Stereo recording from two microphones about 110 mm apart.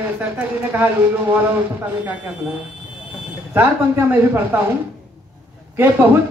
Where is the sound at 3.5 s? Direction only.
15° right (ahead or behind).